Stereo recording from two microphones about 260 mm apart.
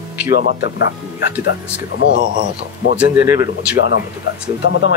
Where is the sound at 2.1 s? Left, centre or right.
Right.